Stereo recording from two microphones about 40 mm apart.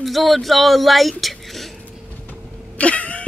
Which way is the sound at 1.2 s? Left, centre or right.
Centre.